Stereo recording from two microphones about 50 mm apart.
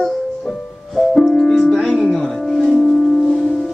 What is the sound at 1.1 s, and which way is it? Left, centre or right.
Music, centre.